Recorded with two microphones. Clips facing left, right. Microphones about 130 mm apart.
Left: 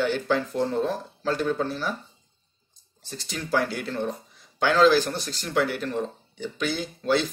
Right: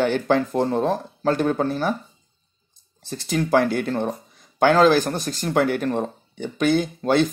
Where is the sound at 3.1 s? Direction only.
50° right (ahead or behind).